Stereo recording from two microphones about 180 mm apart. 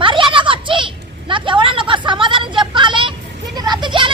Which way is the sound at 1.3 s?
30° right (ahead or behind).